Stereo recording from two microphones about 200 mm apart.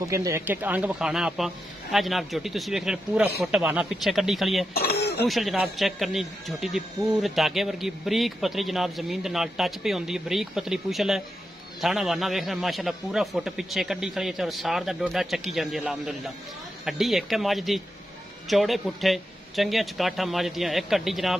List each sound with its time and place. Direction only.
0.0 s a man's voice: 15° right (ahead or behind)
4.7 s throat clearing: 55° left (ahead or behind)
5.2 s a man's voice: centre (ahead or behind)